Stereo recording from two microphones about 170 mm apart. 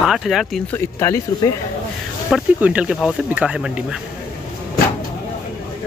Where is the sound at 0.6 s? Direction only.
15° left (ahead or behind).